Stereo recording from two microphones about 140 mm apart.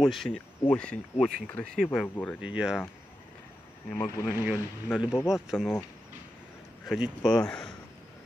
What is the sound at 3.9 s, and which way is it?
Speech, 20° left (ahead or behind).